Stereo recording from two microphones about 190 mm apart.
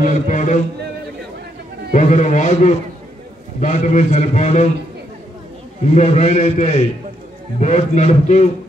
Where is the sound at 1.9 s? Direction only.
40° left (ahead or behind).